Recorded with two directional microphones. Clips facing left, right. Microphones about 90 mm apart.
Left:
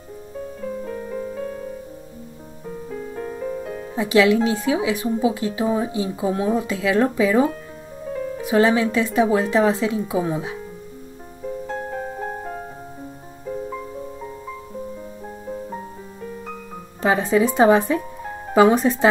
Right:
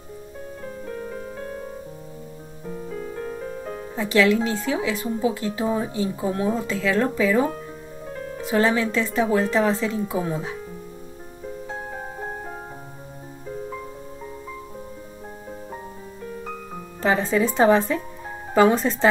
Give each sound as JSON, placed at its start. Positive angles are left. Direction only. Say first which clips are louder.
{"t": 3.9, "sound": "speech", "louder": "left 3 dB", "side_deg": 15}
{"t": 17.0, "sound": "speech", "louder": "left 3 dB", "side_deg": 15}